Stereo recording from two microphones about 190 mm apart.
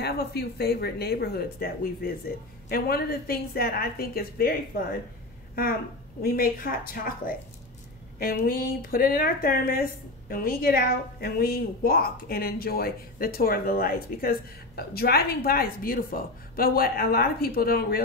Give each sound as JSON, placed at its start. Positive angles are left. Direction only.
{"t": 0.0, "sound": "speech", "side_deg": 60}
{"t": 6.2, "sound": "speech", "side_deg": 50}